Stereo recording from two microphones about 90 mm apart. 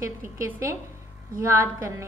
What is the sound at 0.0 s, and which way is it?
A woman's voice, 35° right (ahead or behind).